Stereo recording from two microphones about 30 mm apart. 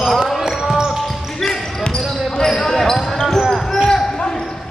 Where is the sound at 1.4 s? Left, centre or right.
Centre.